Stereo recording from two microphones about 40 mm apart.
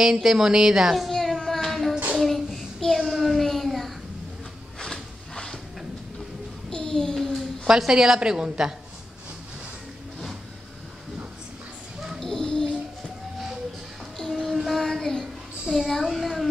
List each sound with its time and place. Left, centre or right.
0.0 s speech: centre
1.1 s child singing: centre
4.7 s a sound: centre
6.7 s child singing: centre
7.2 s a sound: centre
7.6 s speech: centre
12.2 s a sound: centre
14.3 s child singing: centre
15.7 s a child's voice: centre
16.1 s child singing: centre